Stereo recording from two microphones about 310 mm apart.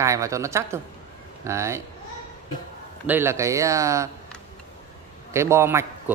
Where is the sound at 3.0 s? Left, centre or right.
Centre.